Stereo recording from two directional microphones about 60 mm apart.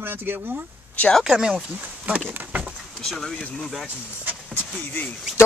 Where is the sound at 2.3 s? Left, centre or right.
Right.